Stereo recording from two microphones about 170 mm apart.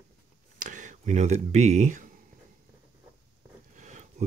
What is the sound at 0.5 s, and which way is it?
Speech, 50° right (ahead or behind).